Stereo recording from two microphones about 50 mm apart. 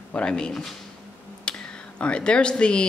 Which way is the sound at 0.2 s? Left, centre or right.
Centre.